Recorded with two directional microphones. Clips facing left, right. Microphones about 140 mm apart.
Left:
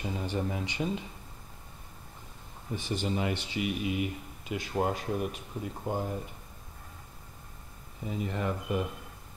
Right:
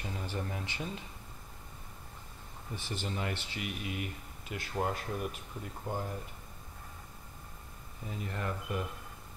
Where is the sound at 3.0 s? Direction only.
10° left (ahead or behind).